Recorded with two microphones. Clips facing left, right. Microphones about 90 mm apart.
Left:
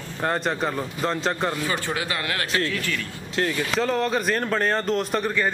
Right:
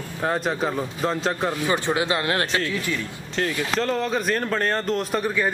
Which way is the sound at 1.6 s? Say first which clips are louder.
Right 4 dB; 20° right (ahead or behind).